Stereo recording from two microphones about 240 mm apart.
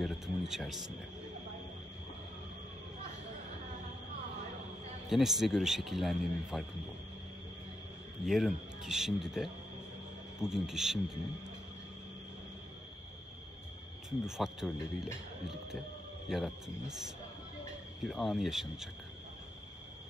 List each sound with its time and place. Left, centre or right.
0.0 s speech: centre
5.1 s speech: centre
8.3 s speech: centre
14.2 s speech: centre
18.0 s speech: centre